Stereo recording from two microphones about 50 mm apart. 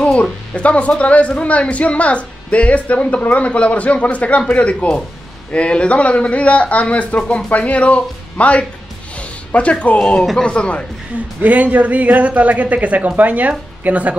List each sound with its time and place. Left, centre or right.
0.2 s a man's voice: left
11.4 s speech: right